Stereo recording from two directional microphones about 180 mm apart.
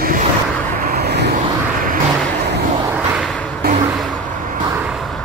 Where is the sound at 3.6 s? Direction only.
55° right (ahead or behind).